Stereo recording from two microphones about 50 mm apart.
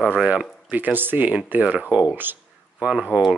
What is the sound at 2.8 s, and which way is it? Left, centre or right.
Speech, centre.